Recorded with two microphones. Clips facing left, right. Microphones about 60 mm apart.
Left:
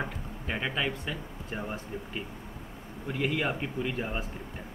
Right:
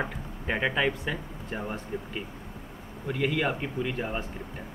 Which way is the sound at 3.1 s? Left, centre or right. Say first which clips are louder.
Right 2 dB; centre.